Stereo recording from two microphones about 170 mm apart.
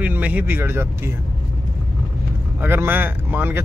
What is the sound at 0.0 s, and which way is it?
Speech, 10° right (ahead or behind).